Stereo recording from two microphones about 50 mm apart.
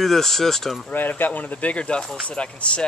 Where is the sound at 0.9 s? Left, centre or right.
Left; by 2.8 s centre.